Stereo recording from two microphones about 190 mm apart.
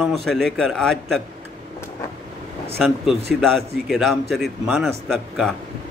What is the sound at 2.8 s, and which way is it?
A man's voice, centre (ahead or behind).